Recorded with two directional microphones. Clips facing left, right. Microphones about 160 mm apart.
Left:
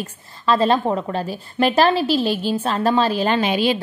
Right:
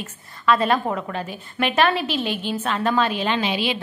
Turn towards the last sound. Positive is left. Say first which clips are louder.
# left 5 dB
turn(degrees=45)  # may be behind; listen again after turning